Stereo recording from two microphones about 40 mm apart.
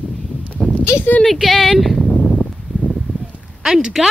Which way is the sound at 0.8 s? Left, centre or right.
Left.